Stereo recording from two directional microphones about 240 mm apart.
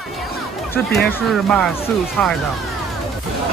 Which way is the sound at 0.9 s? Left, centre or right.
Centre.